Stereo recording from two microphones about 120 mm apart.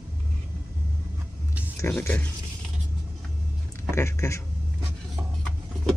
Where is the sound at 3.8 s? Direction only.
25° left (ahead or behind).